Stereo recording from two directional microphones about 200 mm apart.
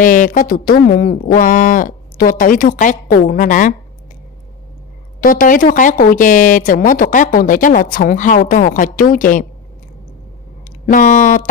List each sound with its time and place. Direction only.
0.0 s speech: 40° left (ahead or behind)
5.2 s speech: 45° left (ahead or behind)
10.9 s speech: 40° left (ahead or behind)